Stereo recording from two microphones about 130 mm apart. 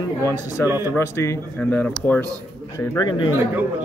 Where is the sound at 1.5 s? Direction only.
10° left (ahead or behind).